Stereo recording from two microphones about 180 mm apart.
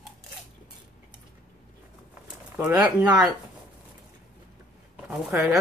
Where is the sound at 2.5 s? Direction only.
10° right (ahead or behind).